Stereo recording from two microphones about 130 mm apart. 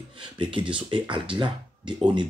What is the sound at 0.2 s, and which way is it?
Speech, 40° right (ahead or behind).